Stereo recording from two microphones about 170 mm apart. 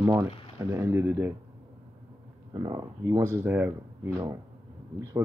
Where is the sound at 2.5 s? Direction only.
25° right (ahead or behind).